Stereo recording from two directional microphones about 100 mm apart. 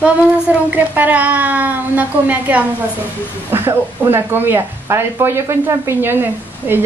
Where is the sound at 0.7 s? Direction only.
20° right (ahead or behind).